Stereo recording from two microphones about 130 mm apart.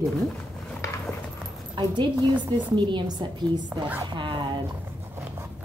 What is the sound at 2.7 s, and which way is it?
A woman's voice, 35° right (ahead or behind).